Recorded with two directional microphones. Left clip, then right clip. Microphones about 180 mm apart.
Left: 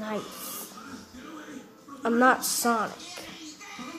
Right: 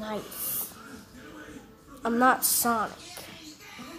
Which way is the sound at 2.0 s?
30° right (ahead or behind).